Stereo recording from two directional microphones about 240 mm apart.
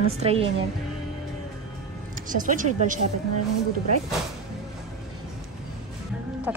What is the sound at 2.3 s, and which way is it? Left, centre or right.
Speech, right.